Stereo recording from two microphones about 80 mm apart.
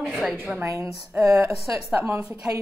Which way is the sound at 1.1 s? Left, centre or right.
Right.